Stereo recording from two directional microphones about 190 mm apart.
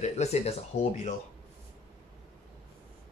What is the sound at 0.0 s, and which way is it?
Speech, 35° left (ahead or behind).